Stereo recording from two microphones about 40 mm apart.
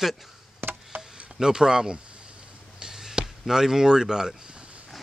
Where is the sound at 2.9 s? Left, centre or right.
Centre; by 4.8 s right.